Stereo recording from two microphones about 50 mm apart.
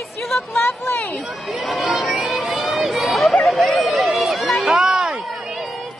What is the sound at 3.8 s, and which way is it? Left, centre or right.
Run, centre.